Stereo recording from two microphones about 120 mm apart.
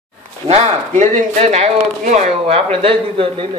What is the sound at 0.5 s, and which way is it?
Speech, 60° right (ahead or behind).